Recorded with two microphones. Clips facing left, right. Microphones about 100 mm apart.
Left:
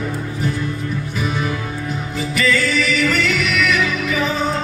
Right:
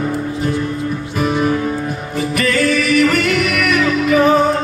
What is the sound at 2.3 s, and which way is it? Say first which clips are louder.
Music: right 3 dB; 55° right (ahead or behind).